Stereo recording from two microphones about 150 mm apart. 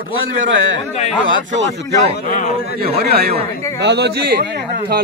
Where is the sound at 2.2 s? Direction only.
70° left (ahead or behind).